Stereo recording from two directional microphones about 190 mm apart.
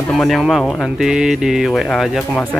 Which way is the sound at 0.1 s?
Centre (ahead or behind).